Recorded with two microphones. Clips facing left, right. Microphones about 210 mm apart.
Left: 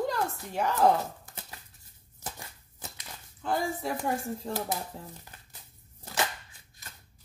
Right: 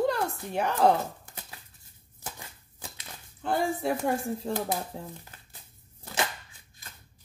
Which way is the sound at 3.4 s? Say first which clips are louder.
Right 3 dB; 60° right (ahead or behind).